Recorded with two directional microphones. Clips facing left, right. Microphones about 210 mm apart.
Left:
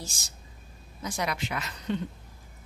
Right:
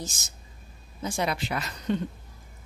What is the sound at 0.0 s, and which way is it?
A woman's voice, 20° right (ahead or behind).